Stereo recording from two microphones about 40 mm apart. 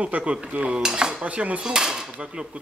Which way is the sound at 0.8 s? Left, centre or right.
Right.